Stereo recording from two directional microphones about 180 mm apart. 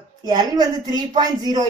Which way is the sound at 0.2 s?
25° right (ahead or behind).